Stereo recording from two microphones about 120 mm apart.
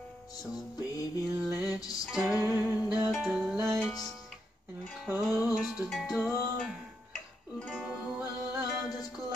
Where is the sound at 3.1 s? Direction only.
5° right (ahead or behind).